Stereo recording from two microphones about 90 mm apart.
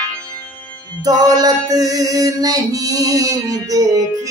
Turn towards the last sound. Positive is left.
turn(degrees=-40)  # may be behind; listen again after turning